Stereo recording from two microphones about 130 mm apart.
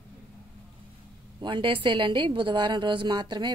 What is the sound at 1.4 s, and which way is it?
A woman's voice, 40° right (ahead or behind).